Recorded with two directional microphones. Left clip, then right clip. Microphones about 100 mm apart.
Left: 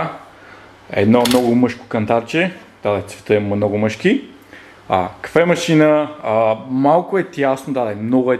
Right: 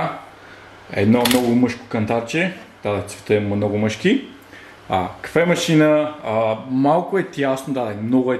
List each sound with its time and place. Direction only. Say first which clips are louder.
0.8 s speech: left 3 dB; 20° left (ahead or behind)